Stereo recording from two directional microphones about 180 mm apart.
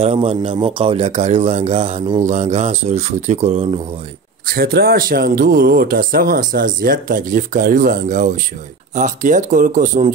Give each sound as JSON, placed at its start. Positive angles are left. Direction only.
{"t": 0.0, "sound": "speech", "side_deg": -35}
{"t": 4.5, "sound": "speech", "side_deg": -60}